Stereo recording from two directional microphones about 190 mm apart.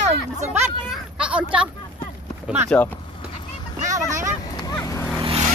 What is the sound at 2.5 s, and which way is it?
Speech, 5° right (ahead or behind).